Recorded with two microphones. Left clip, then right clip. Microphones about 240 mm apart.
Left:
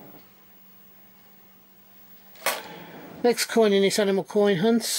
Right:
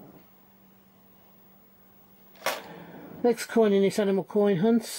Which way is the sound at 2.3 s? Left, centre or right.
Centre.